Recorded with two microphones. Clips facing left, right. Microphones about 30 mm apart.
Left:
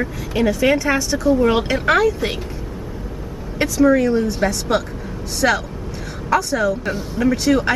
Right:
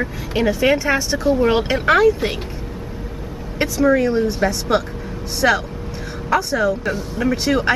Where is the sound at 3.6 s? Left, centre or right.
Centre.